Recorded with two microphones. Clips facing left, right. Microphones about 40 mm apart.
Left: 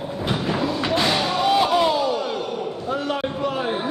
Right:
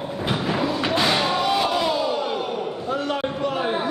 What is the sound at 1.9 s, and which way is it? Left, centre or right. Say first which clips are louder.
Crowd: left 2 dB; centre.